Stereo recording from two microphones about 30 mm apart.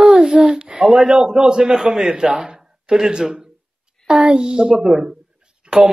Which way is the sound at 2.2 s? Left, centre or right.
Right.